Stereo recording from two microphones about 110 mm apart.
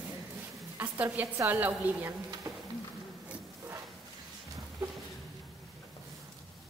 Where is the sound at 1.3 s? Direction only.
20° right (ahead or behind).